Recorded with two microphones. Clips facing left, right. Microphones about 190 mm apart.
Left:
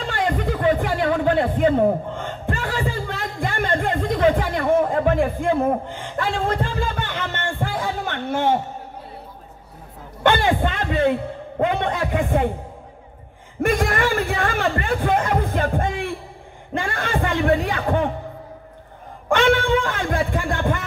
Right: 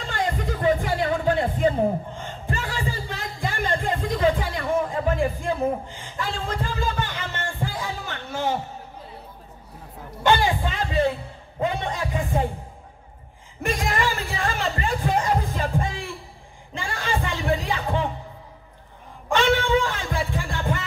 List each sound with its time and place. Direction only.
0.1 s music: 60° left (ahead or behind)
10.2 s a man's voice: 55° left (ahead or behind)
13.6 s speech: 55° left (ahead or behind)
19.2 s speech: 55° left (ahead or behind)